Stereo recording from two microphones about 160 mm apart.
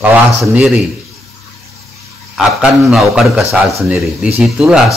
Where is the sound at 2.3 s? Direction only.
5° right (ahead or behind).